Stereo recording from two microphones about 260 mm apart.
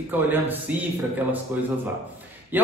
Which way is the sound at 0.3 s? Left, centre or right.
Centre.